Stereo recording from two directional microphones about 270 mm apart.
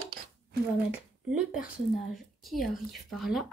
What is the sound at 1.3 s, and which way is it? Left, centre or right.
Speech, centre.